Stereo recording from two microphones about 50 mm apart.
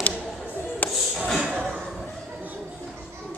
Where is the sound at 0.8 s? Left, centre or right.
Left.